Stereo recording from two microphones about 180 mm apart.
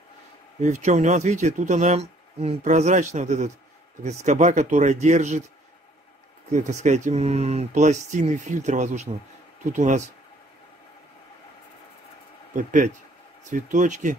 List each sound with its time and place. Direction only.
0.6 s speech: 40° right (ahead or behind)
6.5 s speech: 40° right (ahead or behind)
12.5 s speech: 45° right (ahead or behind)